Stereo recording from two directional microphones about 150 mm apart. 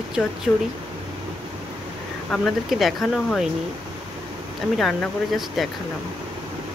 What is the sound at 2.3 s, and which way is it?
Speech, centre (ahead or behind).